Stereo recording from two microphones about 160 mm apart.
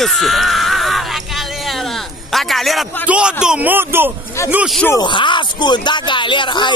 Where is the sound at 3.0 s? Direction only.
5° right (ahead or behind).